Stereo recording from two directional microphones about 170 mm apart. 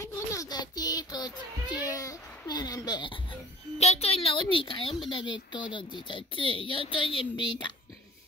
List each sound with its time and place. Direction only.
0.0 s child singing: 20° left (ahead or behind)
5.1 s speech: 25° left (ahead or behind)